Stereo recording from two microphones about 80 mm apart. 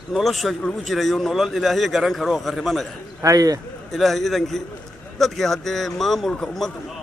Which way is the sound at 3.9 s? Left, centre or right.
Centre.